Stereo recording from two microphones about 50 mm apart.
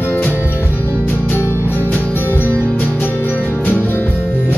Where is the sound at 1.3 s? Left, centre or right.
Left.